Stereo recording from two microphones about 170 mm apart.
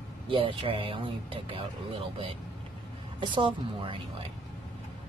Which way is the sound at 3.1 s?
30° right (ahead or behind).